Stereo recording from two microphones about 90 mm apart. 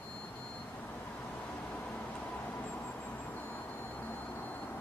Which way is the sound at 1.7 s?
15° left (ahead or behind).